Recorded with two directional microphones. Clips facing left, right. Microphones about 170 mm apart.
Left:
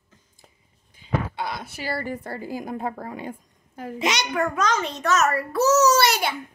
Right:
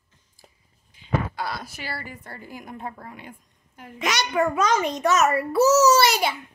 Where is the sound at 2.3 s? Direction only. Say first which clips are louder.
Left 8 dB; 35° left (ahead or behind).